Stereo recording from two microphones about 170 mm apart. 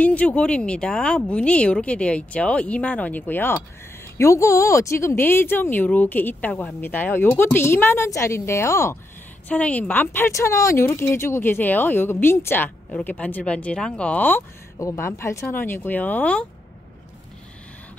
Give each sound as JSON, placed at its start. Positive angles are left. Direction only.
{"t": 0.0, "sound": "speech", "side_deg": 10}